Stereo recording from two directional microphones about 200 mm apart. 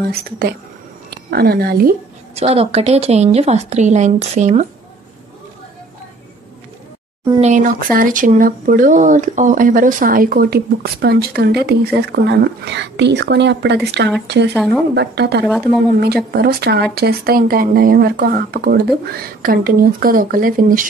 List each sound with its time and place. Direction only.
0.0 s speech: 55° right (ahead or behind)
2.3 s a woman's voice: 30° right (ahead or behind)
7.3 s speech: 35° right (ahead or behind); by 14.5 s 60° right (ahead or behind)
14.5 s speech: 5° left (ahead or behind)
15.0 s speech: 55° right (ahead or behind)
15.4 s speech: 5° left (ahead or behind)
16.0 s speech: 50° right (ahead or behind)